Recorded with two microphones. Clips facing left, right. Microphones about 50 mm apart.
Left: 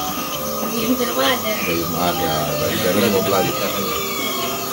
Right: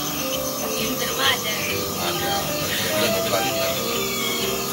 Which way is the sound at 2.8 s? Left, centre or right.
Centre.